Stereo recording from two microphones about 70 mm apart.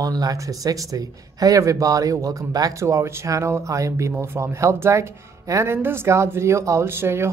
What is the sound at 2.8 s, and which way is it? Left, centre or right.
Speech, right.